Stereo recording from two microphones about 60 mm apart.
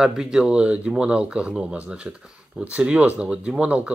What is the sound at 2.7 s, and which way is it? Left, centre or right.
Speech, right.